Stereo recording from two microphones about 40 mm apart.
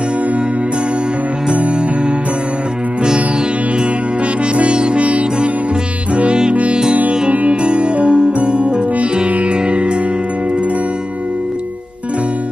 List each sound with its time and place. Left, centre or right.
4.7 s music: right
6.5 s music: right